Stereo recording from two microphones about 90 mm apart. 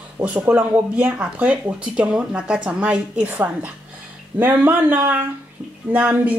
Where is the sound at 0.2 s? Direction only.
15° right (ahead or behind).